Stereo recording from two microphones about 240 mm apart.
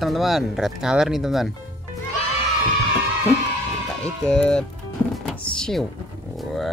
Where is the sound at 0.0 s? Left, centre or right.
Centre.